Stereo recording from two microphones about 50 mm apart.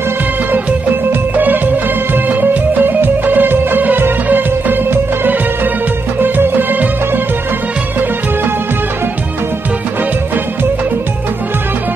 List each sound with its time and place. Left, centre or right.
1.3 s music: right